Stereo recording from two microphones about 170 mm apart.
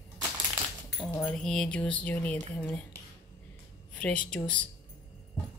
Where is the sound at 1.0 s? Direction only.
5° left (ahead or behind).